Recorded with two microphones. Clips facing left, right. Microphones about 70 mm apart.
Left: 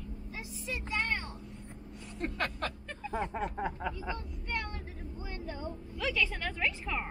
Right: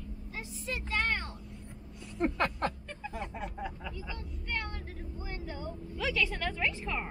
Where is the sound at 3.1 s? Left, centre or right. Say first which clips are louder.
Left 7 dB; left.